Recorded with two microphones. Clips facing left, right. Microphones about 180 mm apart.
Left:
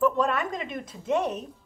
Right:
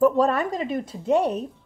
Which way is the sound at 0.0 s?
35° right (ahead or behind).